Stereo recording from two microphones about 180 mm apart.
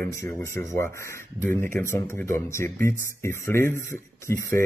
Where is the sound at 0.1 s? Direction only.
15° left (ahead or behind).